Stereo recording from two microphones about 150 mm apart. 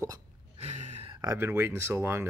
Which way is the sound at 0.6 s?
50° right (ahead or behind).